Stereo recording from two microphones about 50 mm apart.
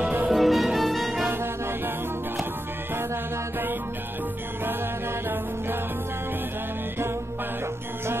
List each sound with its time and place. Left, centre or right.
0.3 s music: centre
1.2 s music: right